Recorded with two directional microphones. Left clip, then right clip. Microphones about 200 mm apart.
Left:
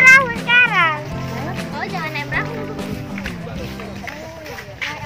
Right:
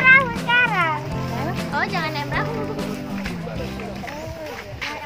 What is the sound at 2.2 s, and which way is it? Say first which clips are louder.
Music: left 1 dB; 5° right (ahead or behind).